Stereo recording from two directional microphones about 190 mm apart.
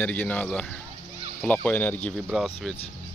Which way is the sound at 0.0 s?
5° left (ahead or behind).